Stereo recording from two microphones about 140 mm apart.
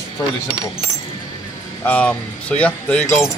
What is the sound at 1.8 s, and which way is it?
Speech, 10° left (ahead or behind).